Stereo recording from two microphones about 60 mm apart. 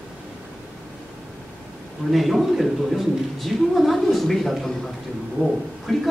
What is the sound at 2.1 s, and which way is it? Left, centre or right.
A man's voice, centre.